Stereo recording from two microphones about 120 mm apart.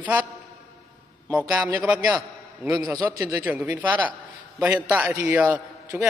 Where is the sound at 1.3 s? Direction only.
5° right (ahead or behind).